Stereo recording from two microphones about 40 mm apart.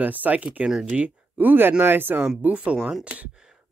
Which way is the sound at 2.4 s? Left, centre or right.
Right.